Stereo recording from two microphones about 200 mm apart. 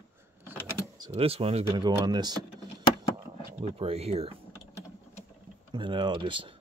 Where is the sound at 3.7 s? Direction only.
30° right (ahead or behind).